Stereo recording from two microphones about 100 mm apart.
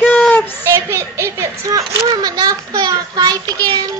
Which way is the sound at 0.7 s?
25° right (ahead or behind).